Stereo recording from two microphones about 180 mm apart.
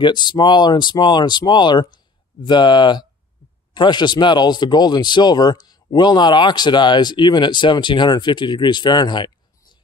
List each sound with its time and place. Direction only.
0.0 s speech: 25° left (ahead or behind)